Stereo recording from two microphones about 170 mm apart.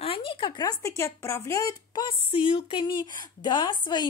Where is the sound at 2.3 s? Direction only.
30° left (ahead or behind).